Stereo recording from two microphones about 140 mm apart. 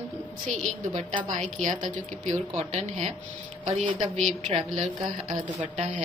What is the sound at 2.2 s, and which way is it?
Speech, 60° right (ahead or behind).